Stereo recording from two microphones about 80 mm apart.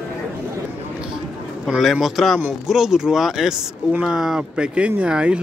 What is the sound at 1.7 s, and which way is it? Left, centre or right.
A man's voice, centre.